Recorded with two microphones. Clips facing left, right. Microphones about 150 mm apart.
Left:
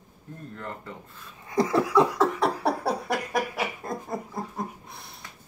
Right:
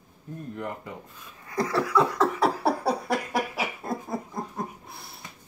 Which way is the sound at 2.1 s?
Centre (ahead or behind).